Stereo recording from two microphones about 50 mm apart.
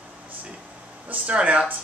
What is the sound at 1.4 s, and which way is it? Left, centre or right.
Speech, right.